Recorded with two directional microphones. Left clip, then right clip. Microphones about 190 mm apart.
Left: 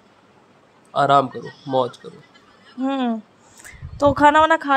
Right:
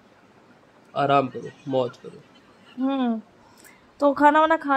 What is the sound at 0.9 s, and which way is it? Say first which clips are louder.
Speech: left 5 dB; 5° left (ahead or behind).